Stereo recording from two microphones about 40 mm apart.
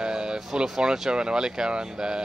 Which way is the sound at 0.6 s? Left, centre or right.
Centre.